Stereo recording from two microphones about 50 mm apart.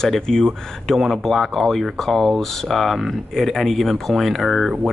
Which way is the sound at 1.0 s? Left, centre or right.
Centre.